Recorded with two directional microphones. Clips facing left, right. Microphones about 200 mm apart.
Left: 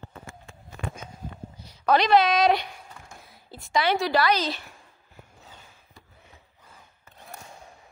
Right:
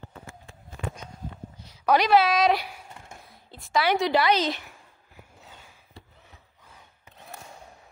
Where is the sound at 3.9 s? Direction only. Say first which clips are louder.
Right 1 dB; 20° right (ahead or behind).